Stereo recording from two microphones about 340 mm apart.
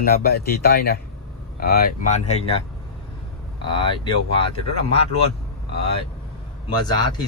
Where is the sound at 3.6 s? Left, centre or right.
Centre.